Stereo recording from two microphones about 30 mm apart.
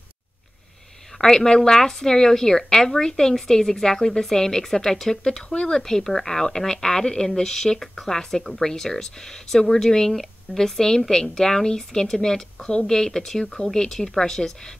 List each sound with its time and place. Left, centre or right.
1.1 s speech: centre